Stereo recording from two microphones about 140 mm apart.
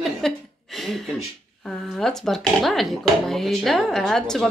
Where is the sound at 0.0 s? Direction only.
Centre (ahead or behind).